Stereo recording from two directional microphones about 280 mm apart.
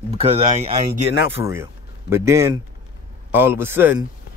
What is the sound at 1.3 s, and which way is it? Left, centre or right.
A man's voice, centre.